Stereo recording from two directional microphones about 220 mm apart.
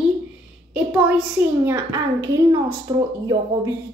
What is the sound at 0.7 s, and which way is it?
A woman's voice, 5° right (ahead or behind).